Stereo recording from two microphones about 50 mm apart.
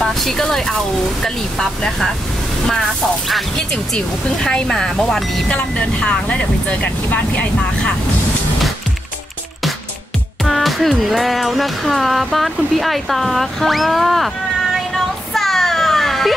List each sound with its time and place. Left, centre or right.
0.0 s music: centre
2.7 s music: centre
3.5 s speech: centre
5.5 s speech: left
10.4 s music: centre
15.3 s a sound: centre